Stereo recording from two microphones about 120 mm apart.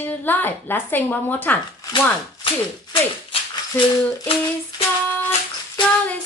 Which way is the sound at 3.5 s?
45° left (ahead or behind).